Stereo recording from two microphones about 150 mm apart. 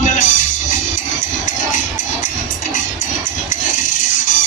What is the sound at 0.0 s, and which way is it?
Music, 55° left (ahead or behind).